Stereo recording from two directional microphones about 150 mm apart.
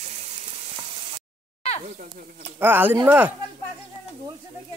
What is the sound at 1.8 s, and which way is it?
Speech, 55° right (ahead or behind).